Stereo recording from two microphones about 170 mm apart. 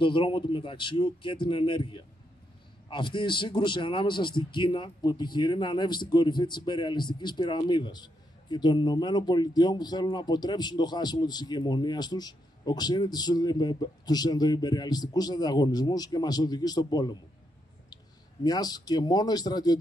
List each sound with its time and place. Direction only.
0.0 s a man's voice: 30° left (ahead or behind)
18.4 s a man's voice: 25° left (ahead or behind)